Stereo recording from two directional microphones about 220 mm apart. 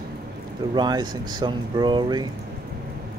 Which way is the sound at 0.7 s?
20° right (ahead or behind).